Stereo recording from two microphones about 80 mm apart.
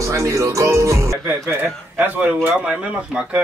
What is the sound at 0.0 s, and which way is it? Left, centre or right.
Speech, right.